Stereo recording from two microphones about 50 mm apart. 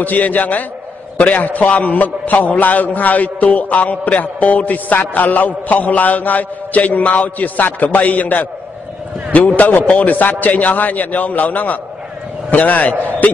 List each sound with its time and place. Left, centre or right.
0.0 s a man's voice: left
9.6 s a man's voice: left
13.2 s music: left